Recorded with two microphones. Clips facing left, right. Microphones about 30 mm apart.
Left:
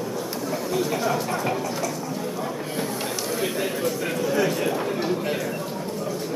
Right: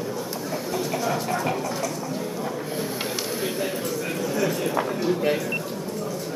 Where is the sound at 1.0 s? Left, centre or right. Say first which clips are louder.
Left 1 dB; centre.